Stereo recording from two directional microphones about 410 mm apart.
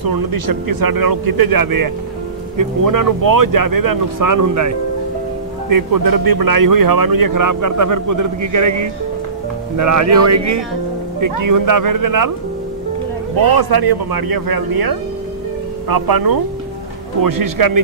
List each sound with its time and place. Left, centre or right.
0.0 s a man's voice: right
13.6 s a man's voice: right